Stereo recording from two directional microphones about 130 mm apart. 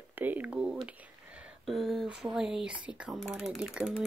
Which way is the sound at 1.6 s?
Centre (ahead or behind).